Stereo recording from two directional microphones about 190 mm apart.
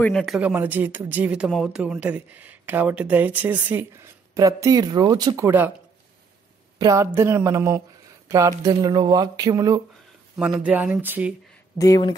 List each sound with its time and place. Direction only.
0.0 s speech: centre (ahead or behind)
6.8 s speech: 15° right (ahead or behind)
10.6 s speech: 5° right (ahead or behind)
11.8 s speech: 20° left (ahead or behind)